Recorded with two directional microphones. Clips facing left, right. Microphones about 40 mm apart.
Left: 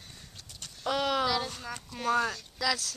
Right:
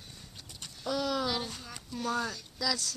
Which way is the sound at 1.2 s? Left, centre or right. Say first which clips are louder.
Left 4 dB; left.